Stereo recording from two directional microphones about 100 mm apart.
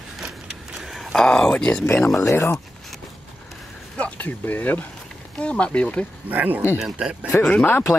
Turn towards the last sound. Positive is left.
turn(degrees=10)  # may be behind; listen again after turning